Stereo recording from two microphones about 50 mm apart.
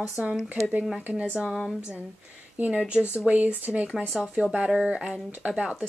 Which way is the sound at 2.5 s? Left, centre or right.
Right.